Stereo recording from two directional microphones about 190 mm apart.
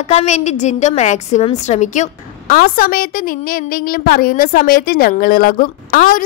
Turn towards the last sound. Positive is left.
turn(degrees=45)  # may be behind; listen again after turning